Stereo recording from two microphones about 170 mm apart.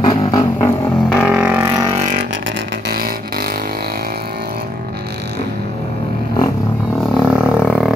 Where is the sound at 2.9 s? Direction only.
60° right (ahead or behind).